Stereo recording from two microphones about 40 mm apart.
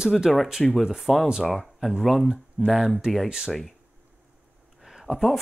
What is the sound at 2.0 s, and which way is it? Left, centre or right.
Speech, centre.